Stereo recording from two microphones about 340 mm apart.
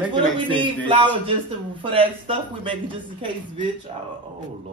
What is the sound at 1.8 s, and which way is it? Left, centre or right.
A man's voice, centre.